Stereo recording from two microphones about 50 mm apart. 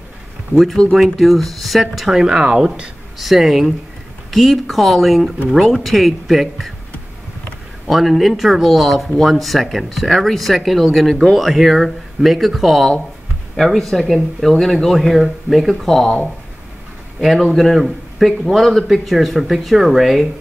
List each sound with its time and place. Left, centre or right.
0.9 s speech: centre
3.2 s speech: centre
7.9 s speech: centre
17.2 s speech: centre